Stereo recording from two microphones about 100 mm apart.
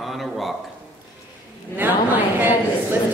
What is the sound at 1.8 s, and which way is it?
Speech, 15° right (ahead or behind).